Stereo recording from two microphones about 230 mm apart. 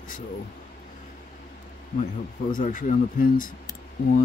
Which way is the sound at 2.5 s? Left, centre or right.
Left.